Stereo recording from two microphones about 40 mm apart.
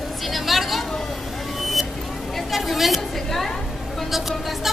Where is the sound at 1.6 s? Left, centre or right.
Centre.